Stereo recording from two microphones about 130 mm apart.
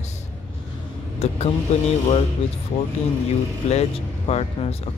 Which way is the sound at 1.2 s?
55° left (ahead or behind).